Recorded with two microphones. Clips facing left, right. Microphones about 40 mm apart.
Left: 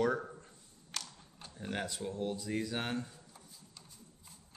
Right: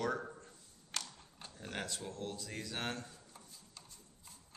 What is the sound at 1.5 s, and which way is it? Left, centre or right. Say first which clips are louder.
Speech: left 4 dB; centre.